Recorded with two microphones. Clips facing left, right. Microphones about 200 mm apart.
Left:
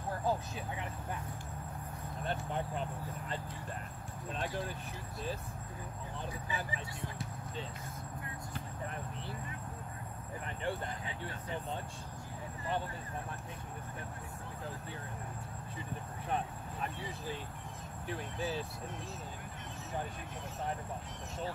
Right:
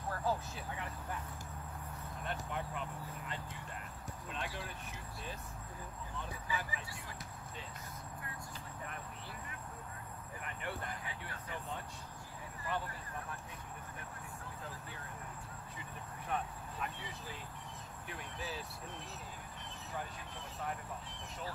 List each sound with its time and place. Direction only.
0.2 s speech: 20° left (ahead or behind)
2.2 s speech: 35° left (ahead or behind)
6.5 s speech: 30° left (ahead or behind)
10.4 s speech: 30° left (ahead or behind)
16.3 s vehicle: 30° left (ahead or behind)
18.0 s speech: 30° left (ahead or behind)